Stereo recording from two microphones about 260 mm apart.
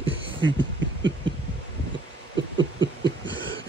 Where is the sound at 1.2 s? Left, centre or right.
Right.